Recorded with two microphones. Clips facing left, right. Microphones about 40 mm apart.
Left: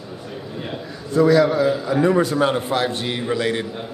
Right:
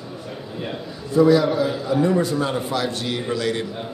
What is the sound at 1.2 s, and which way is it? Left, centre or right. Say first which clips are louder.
Speech: left 1 dB; centre.